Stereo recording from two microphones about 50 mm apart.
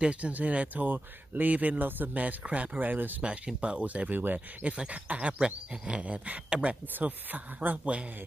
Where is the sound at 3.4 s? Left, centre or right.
Centre.